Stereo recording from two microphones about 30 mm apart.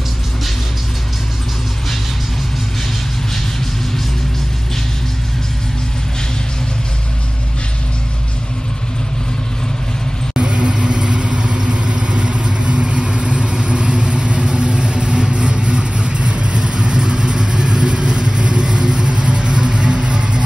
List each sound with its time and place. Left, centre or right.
10.3 s vehicle: right
11.3 s vehicle: right
11.7 s vehicle: right
16.5 s vehicle: right